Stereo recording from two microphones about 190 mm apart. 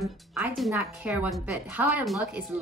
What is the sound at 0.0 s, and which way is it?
A woman's voice, 10° right (ahead or behind).